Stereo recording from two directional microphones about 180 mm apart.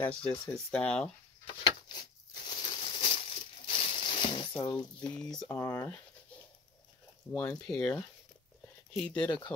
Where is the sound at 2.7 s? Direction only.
30° left (ahead or behind).